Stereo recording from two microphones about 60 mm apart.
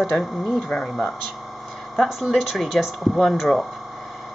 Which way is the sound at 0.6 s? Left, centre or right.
Centre.